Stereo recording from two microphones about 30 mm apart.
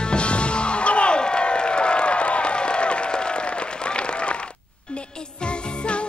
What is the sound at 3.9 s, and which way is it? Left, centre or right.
Applause, left.